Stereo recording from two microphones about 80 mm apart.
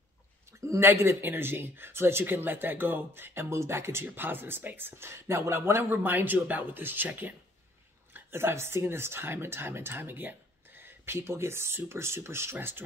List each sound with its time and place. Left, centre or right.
0.5 s speech: right